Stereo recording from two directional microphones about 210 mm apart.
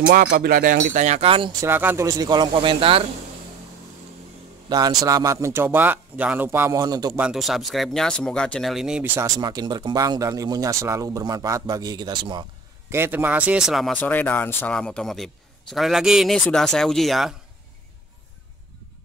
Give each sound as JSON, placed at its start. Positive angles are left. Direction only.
{"t": 0.1, "sound": "speech", "side_deg": -45}
{"t": 1.7, "sound": "speech", "side_deg": -10}
{"t": 4.6, "sound": "a man's voice", "side_deg": -20}
{"t": 7.2, "sound": "speech", "side_deg": 0}
{"t": 12.9, "sound": "speech", "side_deg": -10}